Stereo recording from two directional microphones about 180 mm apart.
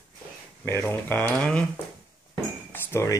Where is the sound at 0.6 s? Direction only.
10° left (ahead or behind).